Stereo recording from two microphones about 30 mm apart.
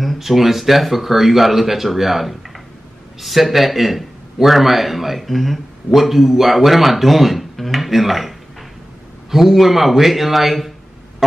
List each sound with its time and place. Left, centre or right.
0.2 s speech: centre